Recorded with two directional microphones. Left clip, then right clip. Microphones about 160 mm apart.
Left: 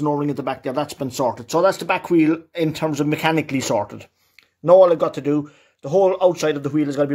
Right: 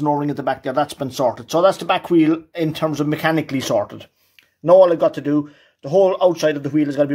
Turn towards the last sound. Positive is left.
turn(degrees=15)  # may be behind; listen again after turning